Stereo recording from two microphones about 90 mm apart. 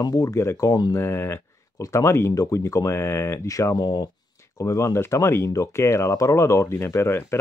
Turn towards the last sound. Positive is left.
turn(degrees=30)  # may be behind; listen again after turning